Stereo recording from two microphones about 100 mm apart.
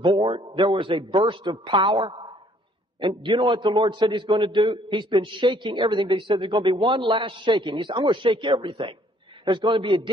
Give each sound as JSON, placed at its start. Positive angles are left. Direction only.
{"t": 0.0, "sound": "a man's voice", "side_deg": -60}